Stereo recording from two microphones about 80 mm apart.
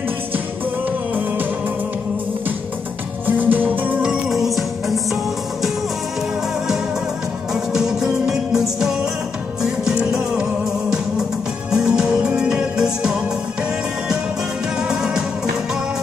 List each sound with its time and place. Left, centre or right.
3.3 s music: right
4.0 s music: centre
7.5 s music: centre
14.8 s music: centre